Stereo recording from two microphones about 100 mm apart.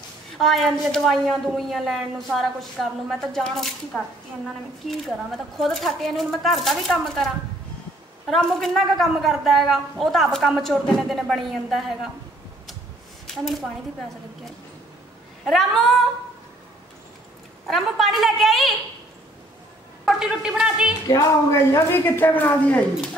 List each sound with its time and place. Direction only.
0.4 s a woman's voice: centre (ahead or behind)
8.3 s a woman's voice: 5° left (ahead or behind)
13.3 s a woman's voice: centre (ahead or behind)
15.4 s a woman's voice: centre (ahead or behind)
17.6 s a woman's voice: centre (ahead or behind)
20.1 s a woman's voice: 5° right (ahead or behind)
21.1 s a woman's voice: 30° left (ahead or behind); by 22.8 s 15° left (ahead or behind)